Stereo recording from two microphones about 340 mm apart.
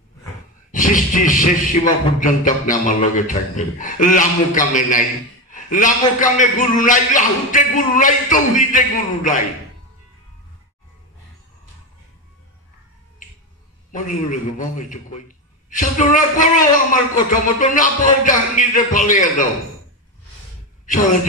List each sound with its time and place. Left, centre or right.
0.7 s speech: left
13.9 s speech: left